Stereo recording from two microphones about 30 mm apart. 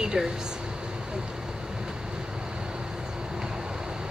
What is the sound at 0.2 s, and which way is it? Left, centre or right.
Speech, centre.